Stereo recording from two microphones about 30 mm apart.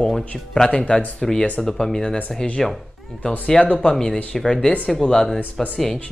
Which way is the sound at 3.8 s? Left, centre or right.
Left.